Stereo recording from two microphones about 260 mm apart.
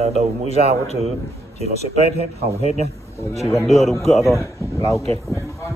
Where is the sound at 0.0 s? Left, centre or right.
Right.